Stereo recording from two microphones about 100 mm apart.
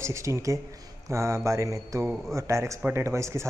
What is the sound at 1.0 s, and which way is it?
Mantra, 30° right (ahead or behind).